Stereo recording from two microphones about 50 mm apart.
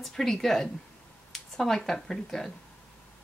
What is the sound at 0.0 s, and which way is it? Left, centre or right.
Speech, centre.